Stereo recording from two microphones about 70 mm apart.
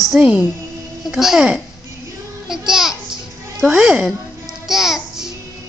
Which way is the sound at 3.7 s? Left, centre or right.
Centre.